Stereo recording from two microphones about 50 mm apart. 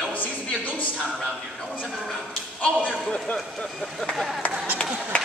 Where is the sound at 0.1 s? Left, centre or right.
Left.